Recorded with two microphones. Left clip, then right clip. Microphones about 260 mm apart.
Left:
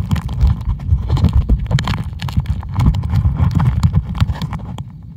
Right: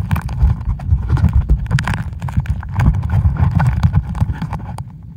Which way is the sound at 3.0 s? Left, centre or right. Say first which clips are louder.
Even; right.